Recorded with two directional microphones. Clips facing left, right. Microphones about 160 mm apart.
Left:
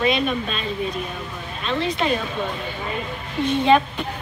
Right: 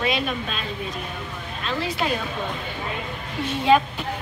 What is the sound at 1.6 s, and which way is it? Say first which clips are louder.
Speech: left 3 dB; 5° right (ahead or behind).